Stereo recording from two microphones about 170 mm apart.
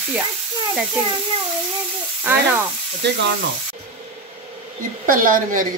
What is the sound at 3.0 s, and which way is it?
Speech, 85° right.